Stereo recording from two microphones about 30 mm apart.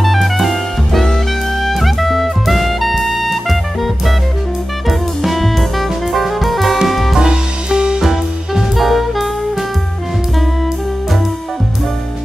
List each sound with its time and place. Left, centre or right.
0.0 s jazz: centre
1.7 s music: centre
7.2 s music: right
8.0 s music: centre
8.7 s music: centre